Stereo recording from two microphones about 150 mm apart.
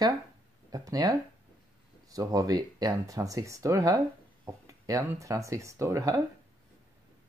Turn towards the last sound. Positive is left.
turn(degrees=-20)  # may be behind; listen again after turning